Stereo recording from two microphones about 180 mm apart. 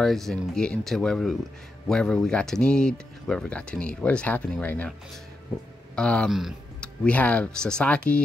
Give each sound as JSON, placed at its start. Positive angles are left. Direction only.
{"t": 0.0, "sound": "speech", "side_deg": 0}